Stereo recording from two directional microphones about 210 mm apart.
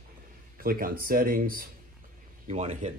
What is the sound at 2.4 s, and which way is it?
Speech, 30° right (ahead or behind).